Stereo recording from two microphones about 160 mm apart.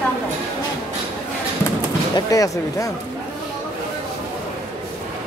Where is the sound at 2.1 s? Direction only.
20° left (ahead or behind).